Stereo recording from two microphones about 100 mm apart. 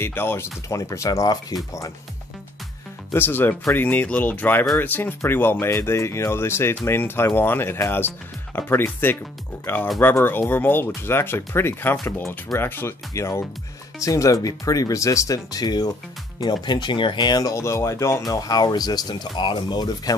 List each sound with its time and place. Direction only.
0.0 s speech: 25° left (ahead or behind)
3.2 s speech: 20° left (ahead or behind)
18.3 s speech: 40° left (ahead or behind)